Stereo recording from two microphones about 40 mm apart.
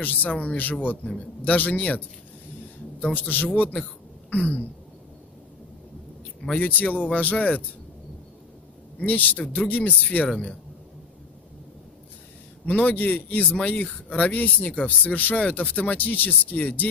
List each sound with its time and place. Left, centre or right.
0.0 s speech: left
3.1 s speech: left
6.6 s speech: left
9.0 s speech: left
12.6 s speech: left
14.7 s speech: left
15.1 s speech: left